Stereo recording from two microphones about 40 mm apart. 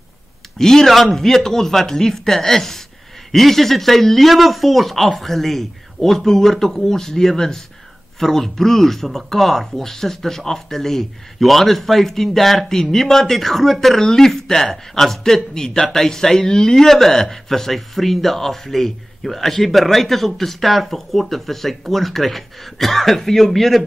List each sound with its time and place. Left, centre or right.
0.6 s speech: centre